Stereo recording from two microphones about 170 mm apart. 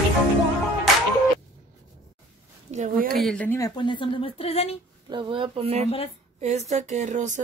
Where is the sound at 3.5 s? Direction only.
25° left (ahead or behind).